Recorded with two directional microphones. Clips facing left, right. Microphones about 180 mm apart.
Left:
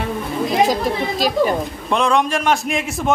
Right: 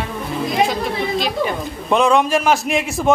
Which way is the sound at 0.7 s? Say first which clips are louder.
Left 1 dB; 40° left (ahead or behind).